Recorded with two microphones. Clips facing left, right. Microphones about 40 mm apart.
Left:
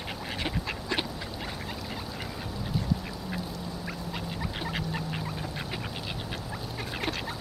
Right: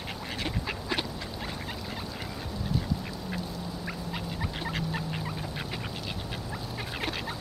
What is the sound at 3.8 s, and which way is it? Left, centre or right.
Fowl, centre.